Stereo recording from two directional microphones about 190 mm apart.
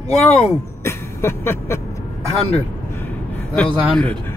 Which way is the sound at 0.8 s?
15° left (ahead or behind).